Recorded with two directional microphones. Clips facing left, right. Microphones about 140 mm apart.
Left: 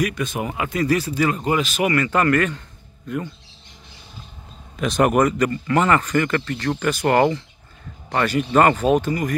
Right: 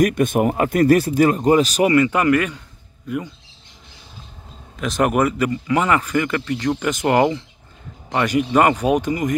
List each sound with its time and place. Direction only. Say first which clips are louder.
0.0 s speech: right 7 dB; 50° right (ahead or behind)
1.9 s speech: even; 15° right (ahead or behind)
4.7 s speech: left 1 dB; centre (ahead or behind); by 9.4 s 20° right (ahead or behind)